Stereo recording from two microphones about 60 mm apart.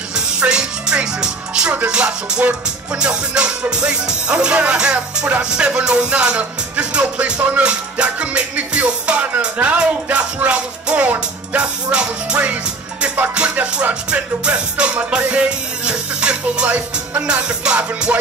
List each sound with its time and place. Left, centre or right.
0.1 s music: centre